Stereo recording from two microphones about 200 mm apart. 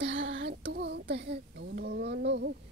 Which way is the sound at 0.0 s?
65° right (ahead or behind).